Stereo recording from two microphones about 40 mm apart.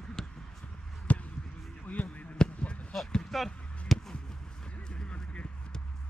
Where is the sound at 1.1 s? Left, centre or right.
Left.